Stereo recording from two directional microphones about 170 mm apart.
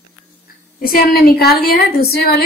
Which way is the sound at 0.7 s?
60° left (ahead or behind).